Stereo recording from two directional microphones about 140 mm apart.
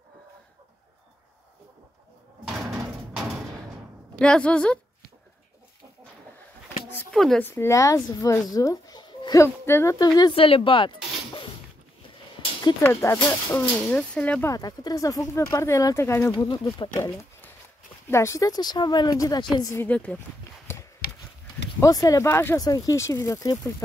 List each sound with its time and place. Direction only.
2.4 s door: centre (ahead or behind)
4.2 s speech: 5° left (ahead or behind)
7.1 s speech: 5° left (ahead or behind)
7.4 s speech: 20° left (ahead or behind)
10.3 s speech: 40° left (ahead or behind)
12.8 s speech: 20° left (ahead or behind)
13.5 s speech: 10° left (ahead or behind)
14.4 s speech: 25° left (ahead or behind)
16.9 s speech: 15° left (ahead or behind)
20.7 s a sound: 20° left (ahead or behind)
21.8 s speech: 25° left (ahead or behind)